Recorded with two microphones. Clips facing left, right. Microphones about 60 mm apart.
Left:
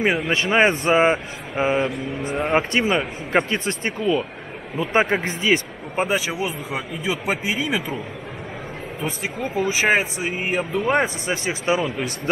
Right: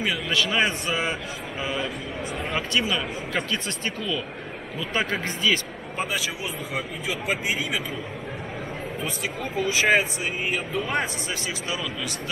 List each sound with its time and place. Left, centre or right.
0.3 s speech: left
9.0 s speech: left